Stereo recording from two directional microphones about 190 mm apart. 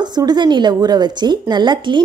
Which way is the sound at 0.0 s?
20° right (ahead or behind).